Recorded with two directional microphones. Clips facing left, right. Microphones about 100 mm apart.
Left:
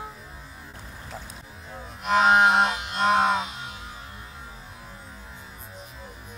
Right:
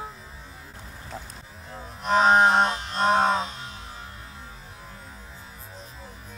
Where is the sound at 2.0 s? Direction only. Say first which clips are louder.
Even; 35° right (ahead or behind).